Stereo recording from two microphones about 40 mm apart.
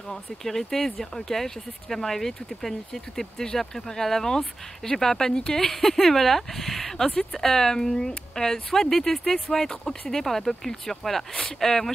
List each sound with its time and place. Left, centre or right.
0.1 s speech: centre